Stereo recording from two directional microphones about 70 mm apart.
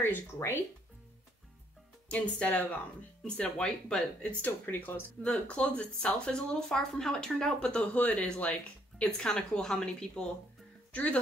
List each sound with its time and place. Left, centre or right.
0.0 s speech: left
2.0 s speech: centre
4.4 s speech: left
5.2 s speech: centre